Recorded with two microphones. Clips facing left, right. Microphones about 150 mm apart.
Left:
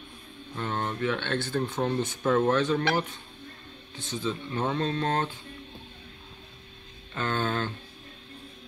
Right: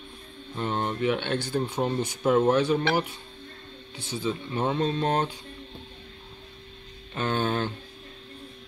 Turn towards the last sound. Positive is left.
turn(degrees=-20)  # may be behind; listen again after turning